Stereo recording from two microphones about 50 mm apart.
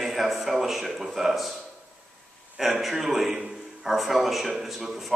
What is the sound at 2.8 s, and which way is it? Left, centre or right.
A man's voice, centre.